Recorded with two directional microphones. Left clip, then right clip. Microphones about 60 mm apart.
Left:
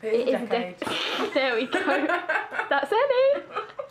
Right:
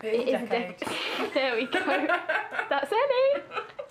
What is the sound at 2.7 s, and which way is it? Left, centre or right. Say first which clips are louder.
Speech: left 3 dB; left.